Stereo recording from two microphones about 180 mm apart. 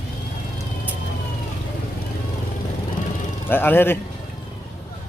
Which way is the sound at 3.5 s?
10° left (ahead or behind).